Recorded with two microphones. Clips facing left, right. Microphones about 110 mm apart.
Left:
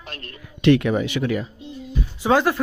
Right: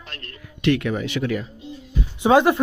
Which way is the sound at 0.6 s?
25° left (ahead or behind).